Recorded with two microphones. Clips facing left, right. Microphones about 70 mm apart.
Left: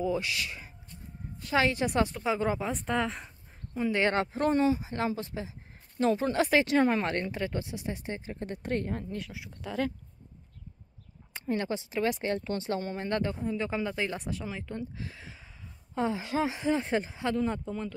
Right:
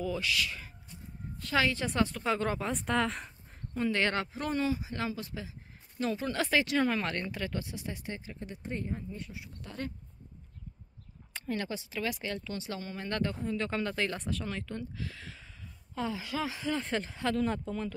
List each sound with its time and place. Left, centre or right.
0.0 s a woman's voice: left
4.0 s speech: left
8.6 s a woman's voice: left
11.3 s speech: left
16.0 s speech: left; by 17.9 s centre